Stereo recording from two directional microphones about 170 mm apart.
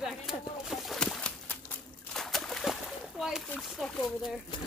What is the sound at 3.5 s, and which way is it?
Speech, centre (ahead or behind).